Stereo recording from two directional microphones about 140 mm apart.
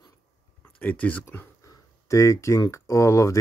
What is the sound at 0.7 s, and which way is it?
Speech, 10° left (ahead or behind).